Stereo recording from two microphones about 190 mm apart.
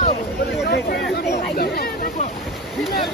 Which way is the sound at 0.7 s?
60° left (ahead or behind).